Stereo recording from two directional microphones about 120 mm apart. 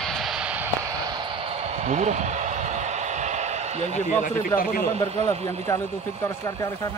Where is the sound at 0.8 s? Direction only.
30° right (ahead or behind).